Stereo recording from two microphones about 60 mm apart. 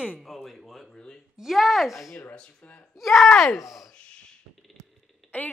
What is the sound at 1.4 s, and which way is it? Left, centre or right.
Speech, centre.